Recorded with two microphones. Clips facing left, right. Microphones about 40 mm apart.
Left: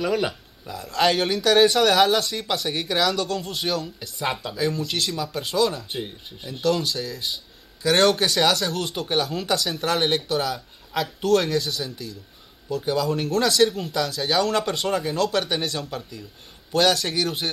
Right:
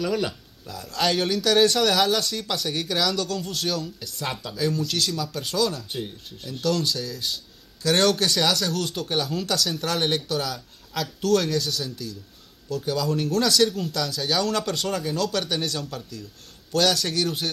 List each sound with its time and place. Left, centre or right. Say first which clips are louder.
0.0 s speech: left 2 dB; centre